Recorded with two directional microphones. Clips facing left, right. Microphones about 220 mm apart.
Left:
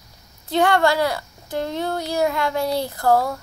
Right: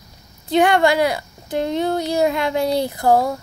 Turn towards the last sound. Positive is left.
turn(degrees=-15)  # may be behind; listen again after turning